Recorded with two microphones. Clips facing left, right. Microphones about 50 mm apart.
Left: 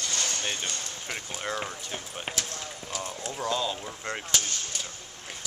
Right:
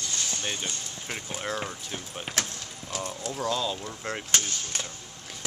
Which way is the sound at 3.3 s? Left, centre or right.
Centre.